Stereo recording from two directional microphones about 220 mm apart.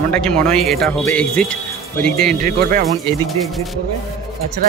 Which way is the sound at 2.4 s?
40° right (ahead or behind).